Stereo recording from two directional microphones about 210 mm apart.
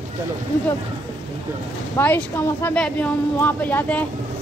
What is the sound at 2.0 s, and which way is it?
Speech, 10° left (ahead or behind).